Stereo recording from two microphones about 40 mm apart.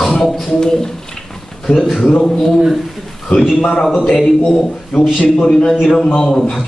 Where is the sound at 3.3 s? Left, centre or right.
Left.